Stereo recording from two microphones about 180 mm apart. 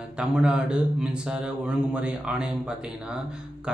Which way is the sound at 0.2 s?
5° right (ahead or behind).